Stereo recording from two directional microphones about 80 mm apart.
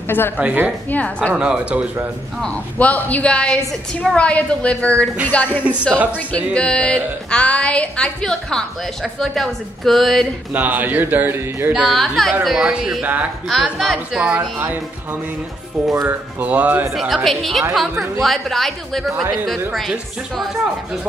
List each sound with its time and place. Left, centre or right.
0.4 s speech: centre
0.8 s a woman's voice: centre
1.3 s speech: centre
2.4 s a woman's voice: centre
5.6 s speech: centre
6.1 s speech: centre
10.5 s speech: right
11.9 s speech: centre
13.0 s speech: centre
13.5 s speech: centre
14.2 s speech: right
16.1 s speech: centre
17.1 s speech: centre